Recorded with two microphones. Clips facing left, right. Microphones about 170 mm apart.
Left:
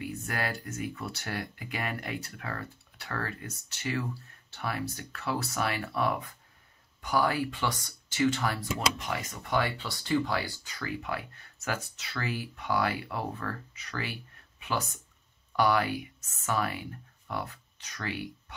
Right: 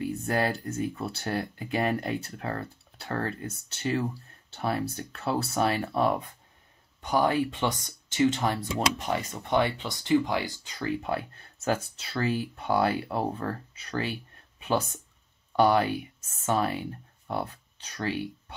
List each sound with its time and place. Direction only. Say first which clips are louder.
0.0 s speech: right 7 dB; 30° right (ahead or behind)
10.8 s speech: right 6 dB; 30° right (ahead or behind)
15.5 s speech: right 4 dB; 30° right (ahead or behind)